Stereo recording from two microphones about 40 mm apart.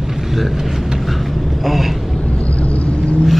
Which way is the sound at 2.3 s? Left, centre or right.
Left.